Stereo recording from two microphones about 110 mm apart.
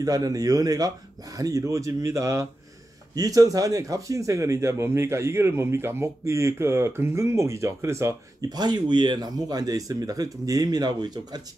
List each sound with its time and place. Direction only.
0.0 s speech: 35° right (ahead or behind)